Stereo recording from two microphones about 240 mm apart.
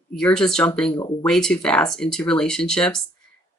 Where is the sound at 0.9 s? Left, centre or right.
Centre.